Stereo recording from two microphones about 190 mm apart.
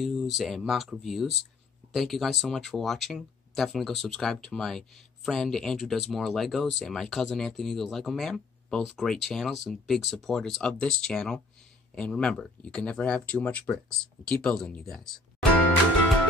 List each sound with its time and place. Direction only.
0.0 s speech: centre (ahead or behind)